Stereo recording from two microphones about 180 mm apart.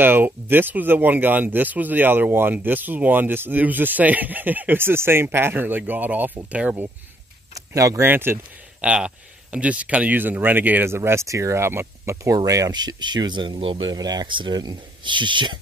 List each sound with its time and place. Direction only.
0.0 s speech: 10° right (ahead or behind)